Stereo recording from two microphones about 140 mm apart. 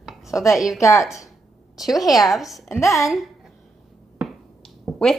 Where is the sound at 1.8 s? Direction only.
Centre (ahead or behind).